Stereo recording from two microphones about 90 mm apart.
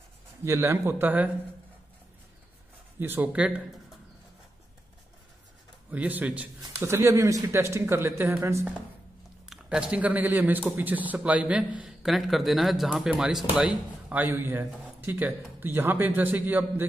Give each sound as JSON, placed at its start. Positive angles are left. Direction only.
{"t": 0.5, "sound": "speech", "side_deg": -30}
{"t": 3.0, "sound": "speech", "side_deg": -20}
{"t": 5.9, "sound": "speech", "side_deg": -15}
{"t": 6.8, "sound": "speech", "side_deg": -30}
{"t": 9.5, "sound": "speech", "side_deg": -10}